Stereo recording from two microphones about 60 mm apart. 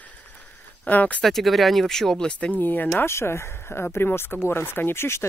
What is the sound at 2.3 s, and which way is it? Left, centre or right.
Speech, centre.